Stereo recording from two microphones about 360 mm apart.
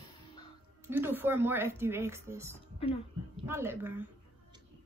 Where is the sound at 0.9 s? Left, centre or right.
Centre.